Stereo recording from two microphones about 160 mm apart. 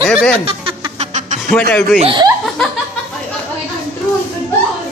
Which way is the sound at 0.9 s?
50° right (ahead or behind).